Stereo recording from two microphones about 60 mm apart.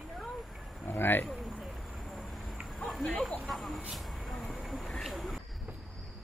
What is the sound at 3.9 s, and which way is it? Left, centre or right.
Vehicle, centre.